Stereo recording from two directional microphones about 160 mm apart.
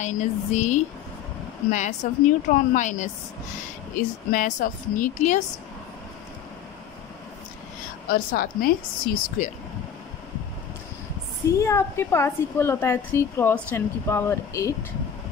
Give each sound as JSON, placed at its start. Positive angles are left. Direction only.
{"t": 0.0, "sound": "a woman's voice", "side_deg": 50}
{"t": 8.1, "sound": "speech", "side_deg": 60}
{"t": 11.5, "sound": "a woman's voice", "side_deg": 15}